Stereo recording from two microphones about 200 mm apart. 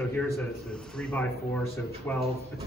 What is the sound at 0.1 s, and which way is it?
A man's voice, 5° left (ahead or behind).